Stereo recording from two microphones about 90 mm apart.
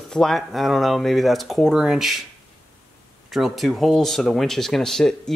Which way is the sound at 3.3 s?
Centre (ahead or behind).